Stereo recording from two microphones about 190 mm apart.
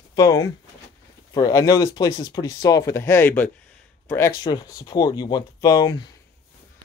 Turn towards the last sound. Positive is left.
turn(degrees=20)  # may be behind; listen again after turning